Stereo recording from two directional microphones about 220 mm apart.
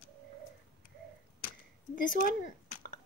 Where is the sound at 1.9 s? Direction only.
40° left (ahead or behind).